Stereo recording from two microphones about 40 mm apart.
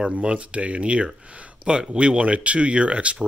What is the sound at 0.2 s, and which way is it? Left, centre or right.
Speech, right.